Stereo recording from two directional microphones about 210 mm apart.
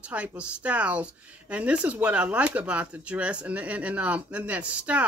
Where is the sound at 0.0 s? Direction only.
5° right (ahead or behind).